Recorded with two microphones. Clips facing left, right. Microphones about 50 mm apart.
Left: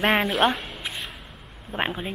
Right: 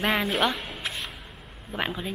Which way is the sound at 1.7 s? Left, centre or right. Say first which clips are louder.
Left 2 dB; left.